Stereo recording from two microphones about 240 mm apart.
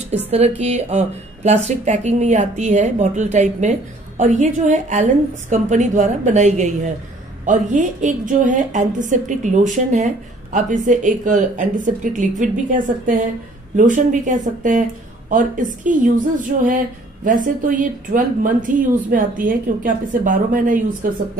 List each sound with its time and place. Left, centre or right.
0.6 s speech: right